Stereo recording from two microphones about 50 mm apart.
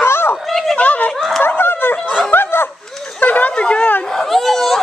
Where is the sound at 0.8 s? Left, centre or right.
Left.